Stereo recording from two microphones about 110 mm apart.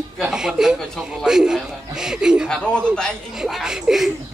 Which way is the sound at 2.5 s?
10° left (ahead or behind).